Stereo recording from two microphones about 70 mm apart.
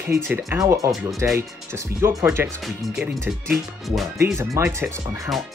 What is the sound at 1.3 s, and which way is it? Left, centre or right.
Speech, right.